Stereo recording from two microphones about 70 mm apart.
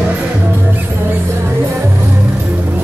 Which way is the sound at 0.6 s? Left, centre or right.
Right.